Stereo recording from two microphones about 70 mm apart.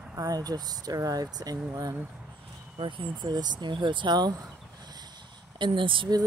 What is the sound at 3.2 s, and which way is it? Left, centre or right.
Speech, right.